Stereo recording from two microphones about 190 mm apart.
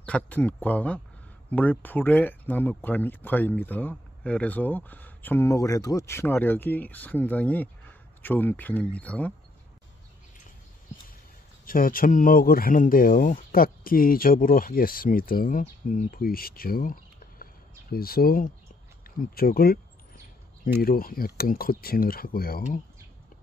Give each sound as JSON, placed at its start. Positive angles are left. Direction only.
{"t": 0.0, "sound": "speech", "side_deg": 5}
{"t": 11.6, "sound": "speech", "side_deg": 50}
{"t": 20.8, "sound": "speech", "side_deg": 50}